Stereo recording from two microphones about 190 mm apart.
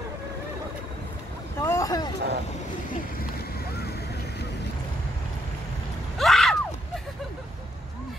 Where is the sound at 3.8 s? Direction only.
60° left (ahead or behind).